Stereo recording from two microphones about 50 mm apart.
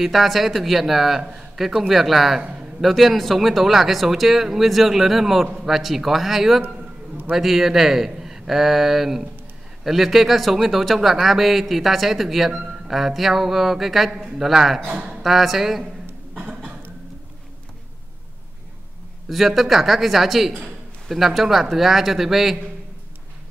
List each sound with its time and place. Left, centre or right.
0.0 s a man's voice: centre
14.8 s speech: right
15.2 s speech: centre
15.8 s a sound: right
19.2 s speech: centre